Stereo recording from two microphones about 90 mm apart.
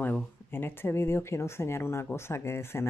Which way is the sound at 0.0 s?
20° left (ahead or behind).